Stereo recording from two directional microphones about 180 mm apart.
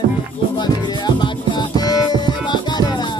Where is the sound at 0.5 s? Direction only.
25° left (ahead or behind).